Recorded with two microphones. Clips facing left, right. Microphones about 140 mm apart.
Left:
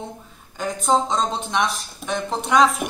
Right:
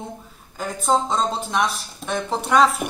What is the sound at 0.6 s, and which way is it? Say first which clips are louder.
A woman's voice: left 1 dB; centre (ahead or behind).